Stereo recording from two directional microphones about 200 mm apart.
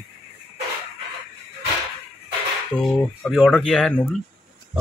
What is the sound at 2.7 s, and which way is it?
A man's voice, 5° left (ahead or behind).